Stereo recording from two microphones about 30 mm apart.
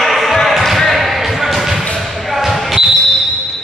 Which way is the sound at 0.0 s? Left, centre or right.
Centre.